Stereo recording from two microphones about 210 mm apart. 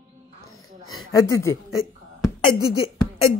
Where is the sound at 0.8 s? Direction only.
75° left (ahead or behind).